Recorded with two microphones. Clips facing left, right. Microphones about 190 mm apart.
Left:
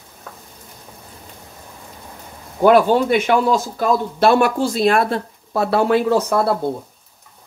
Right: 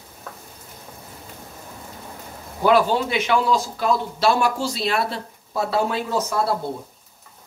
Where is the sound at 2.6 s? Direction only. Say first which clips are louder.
Left 5 dB; 50° left (ahead or behind).